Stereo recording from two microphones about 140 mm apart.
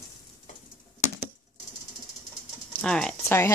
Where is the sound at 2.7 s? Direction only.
5° left (ahead or behind).